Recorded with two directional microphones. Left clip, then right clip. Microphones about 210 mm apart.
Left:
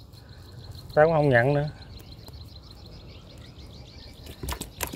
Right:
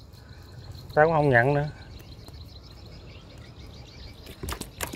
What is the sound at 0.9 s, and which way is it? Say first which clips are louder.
Speech: left 1 dB; 5° left (ahead or behind).